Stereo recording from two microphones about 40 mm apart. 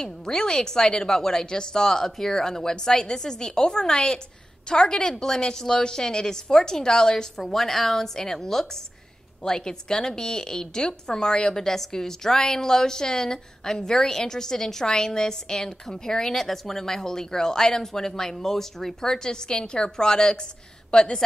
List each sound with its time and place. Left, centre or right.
0.0 s a woman's voice: centre